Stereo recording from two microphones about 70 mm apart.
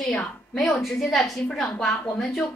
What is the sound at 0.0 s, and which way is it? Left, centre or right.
A woman's voice, centre.